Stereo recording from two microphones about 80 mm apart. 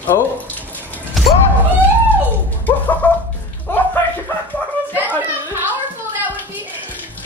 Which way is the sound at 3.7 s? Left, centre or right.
Left.